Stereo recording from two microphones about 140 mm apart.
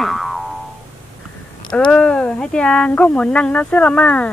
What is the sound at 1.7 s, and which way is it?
Speech, 5° left (ahead or behind).